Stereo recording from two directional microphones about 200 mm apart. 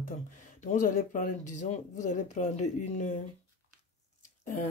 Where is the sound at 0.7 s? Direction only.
40° left (ahead or behind).